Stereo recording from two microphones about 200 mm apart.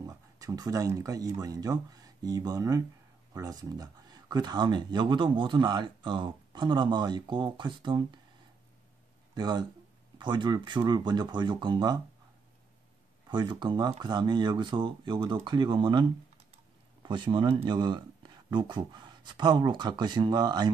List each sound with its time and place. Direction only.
0.0 s speech: 15° right (ahead or behind)
9.3 s speech: 20° right (ahead or behind)
13.3 s speech: 20° right (ahead or behind)